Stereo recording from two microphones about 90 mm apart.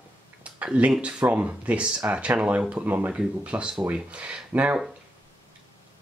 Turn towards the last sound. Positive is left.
turn(degrees=-15)  # may be behind; listen again after turning